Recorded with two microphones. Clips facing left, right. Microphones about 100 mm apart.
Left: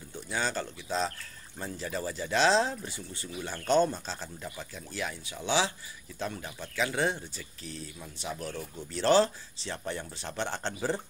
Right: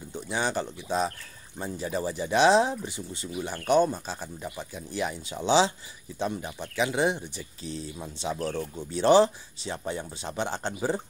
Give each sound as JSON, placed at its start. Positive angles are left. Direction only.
{"t": 0.1, "sound": "speech", "side_deg": -20}